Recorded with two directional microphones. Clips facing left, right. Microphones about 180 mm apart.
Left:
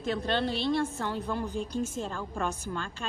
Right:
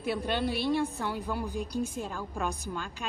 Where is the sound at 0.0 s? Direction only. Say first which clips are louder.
Left 1 dB; 10° right (ahead or behind).